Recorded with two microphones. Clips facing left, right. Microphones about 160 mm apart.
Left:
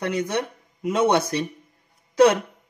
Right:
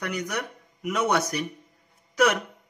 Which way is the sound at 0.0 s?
30° left (ahead or behind).